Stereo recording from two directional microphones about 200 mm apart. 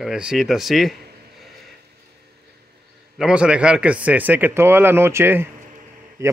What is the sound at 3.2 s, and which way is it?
Speech, 5° right (ahead or behind).